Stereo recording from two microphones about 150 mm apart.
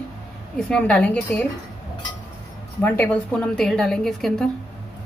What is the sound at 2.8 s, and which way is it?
A woman's voice, 10° left (ahead or behind).